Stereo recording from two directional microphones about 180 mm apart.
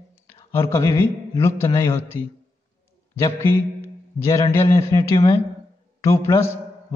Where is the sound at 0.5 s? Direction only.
15° left (ahead or behind).